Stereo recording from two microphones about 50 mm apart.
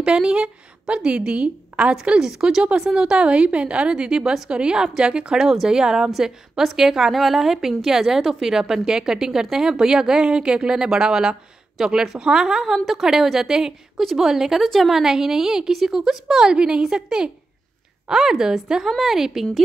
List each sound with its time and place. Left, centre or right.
0.0 s a woman's voice: centre